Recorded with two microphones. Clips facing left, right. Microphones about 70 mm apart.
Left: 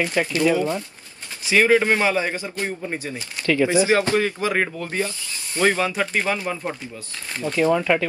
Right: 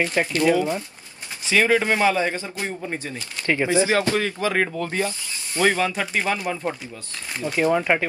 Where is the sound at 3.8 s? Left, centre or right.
Left.